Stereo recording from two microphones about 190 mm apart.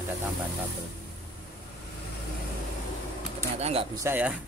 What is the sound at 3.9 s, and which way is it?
Speech, 10° right (ahead or behind).